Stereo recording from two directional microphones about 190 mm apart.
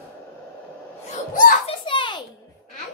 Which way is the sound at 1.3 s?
45° left (ahead or behind).